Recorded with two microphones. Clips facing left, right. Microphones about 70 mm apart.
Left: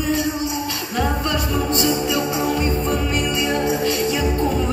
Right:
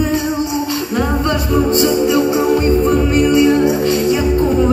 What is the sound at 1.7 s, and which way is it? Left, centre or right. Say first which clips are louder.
Music: right 6 dB; right.